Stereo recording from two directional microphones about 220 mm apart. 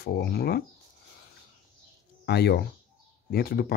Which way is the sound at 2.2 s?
50° left (ahead or behind).